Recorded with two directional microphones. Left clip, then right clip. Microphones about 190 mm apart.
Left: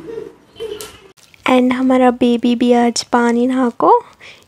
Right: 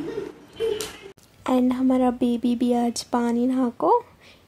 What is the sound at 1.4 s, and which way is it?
Speech, 20° left (ahead or behind).